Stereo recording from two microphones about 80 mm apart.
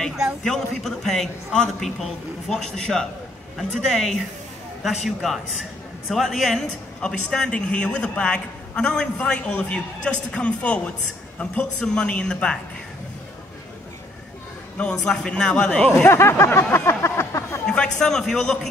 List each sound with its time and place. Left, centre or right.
0.4 s a man's voice: centre
14.8 s a man's voice: centre
16.1 s speech: left
17.6 s a man's voice: centre